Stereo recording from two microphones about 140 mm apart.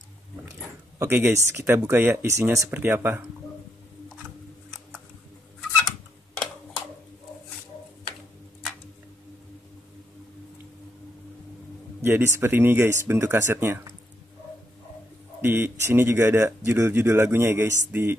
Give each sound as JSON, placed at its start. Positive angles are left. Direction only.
{"t": 0.9, "sound": "speech", "side_deg": -15}
{"t": 12.0, "sound": "speech", "side_deg": -15}
{"t": 15.4, "sound": "speech", "side_deg": -15}